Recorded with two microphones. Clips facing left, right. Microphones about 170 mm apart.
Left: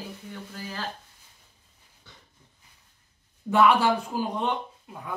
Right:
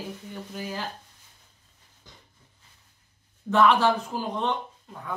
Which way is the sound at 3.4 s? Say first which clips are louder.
Even; 10° left (ahead or behind).